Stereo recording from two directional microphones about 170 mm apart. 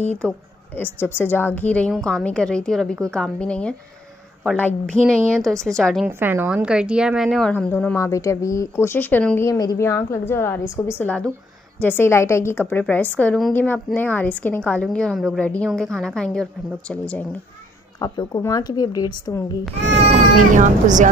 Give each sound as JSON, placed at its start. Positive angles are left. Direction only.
{"t": 0.2, "sound": "a woman's voice", "side_deg": 5}
{"t": 6.0, "sound": "a woman's voice", "side_deg": -10}
{"t": 17.9, "sound": "speech", "side_deg": 25}
{"t": 20.5, "sound": "speech", "side_deg": -50}